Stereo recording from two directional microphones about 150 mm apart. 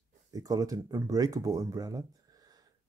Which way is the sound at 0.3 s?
25° right (ahead or behind).